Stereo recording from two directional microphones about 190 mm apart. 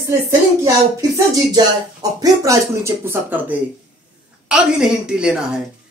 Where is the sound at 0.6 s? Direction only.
15° right (ahead or behind).